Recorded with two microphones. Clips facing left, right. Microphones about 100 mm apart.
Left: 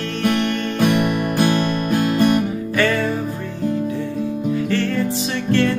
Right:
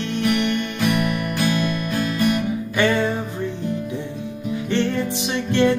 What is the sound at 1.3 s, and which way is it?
Music, 45° left (ahead or behind).